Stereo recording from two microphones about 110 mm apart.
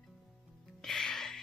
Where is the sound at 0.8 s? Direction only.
5° left (ahead or behind).